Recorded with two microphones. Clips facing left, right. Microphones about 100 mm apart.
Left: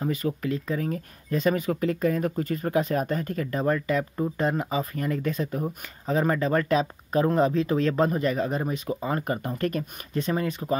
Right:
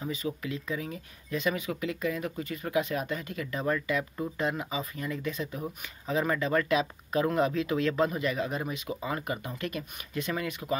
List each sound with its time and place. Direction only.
0.0 s speech: 45° left (ahead or behind)